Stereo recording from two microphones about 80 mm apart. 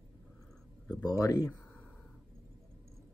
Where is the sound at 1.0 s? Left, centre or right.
Left.